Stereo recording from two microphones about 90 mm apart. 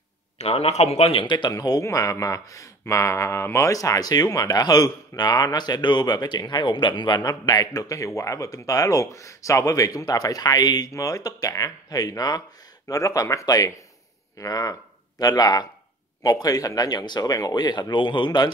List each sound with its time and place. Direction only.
1.1 s a man's voice: 65° left (ahead or behind)
1.5 s speech: 40° left (ahead or behind)
12.8 s speech: 40° left (ahead or behind); by 18.5 s 60° left (ahead or behind)